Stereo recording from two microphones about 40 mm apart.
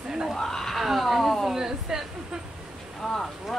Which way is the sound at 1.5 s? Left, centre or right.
Centre.